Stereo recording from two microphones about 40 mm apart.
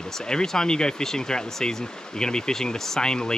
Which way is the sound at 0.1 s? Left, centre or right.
Centre.